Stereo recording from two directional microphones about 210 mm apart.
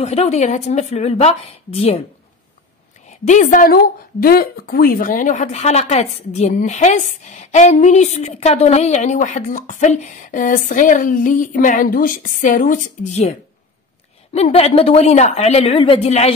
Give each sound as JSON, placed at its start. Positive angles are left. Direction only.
{"t": 0.0, "sound": "a woman's voice", "side_deg": 30}
{"t": 3.1, "sound": "a woman's voice", "side_deg": 35}
{"t": 14.3, "sound": "a woman's voice", "side_deg": 30}